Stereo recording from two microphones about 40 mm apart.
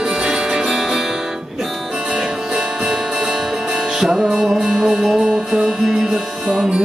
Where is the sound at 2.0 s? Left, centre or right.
Centre.